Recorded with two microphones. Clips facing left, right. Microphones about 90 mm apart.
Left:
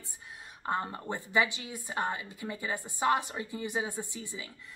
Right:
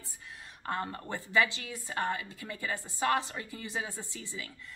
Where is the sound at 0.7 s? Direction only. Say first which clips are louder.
Left 2 dB; 20° left (ahead or behind).